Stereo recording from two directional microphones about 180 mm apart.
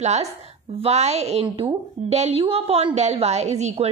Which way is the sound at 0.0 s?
35° right (ahead or behind).